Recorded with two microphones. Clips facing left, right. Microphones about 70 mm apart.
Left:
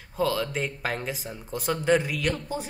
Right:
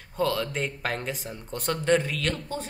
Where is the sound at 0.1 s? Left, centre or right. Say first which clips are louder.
Even; centre.